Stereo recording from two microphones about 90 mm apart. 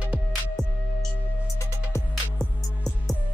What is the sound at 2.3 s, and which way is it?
Music, 5° left (ahead or behind).